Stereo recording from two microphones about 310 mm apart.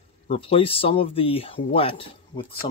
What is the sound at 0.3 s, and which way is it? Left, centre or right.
Speech, centre.